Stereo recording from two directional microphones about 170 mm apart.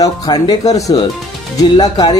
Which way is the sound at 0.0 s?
20° left (ahead or behind).